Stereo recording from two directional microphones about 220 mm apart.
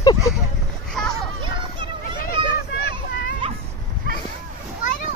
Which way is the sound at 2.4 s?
20° right (ahead or behind).